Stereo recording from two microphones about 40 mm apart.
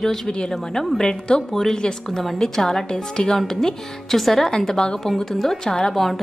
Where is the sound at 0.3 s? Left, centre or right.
Centre.